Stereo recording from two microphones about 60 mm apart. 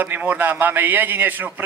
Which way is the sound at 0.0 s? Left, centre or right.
Right.